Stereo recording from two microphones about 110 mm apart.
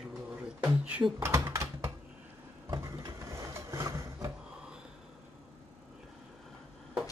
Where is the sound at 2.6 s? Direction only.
30° right (ahead or behind).